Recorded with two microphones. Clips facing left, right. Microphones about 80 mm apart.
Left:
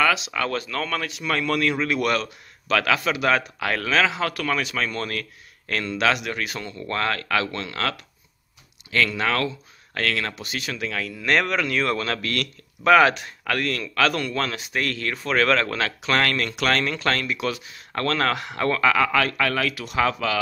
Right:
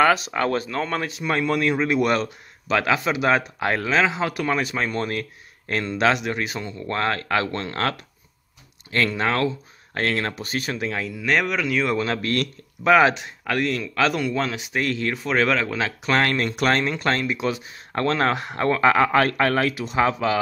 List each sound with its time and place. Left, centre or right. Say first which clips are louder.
0.0 s a man's voice: right 3 dB; right
8.9 s speech: right 1 dB; right
11.1 s speech: left 1 dB; centre; by 12.4 s right
12.8 s speech: even; centre
16.1 s a man's voice: right 2 dB; right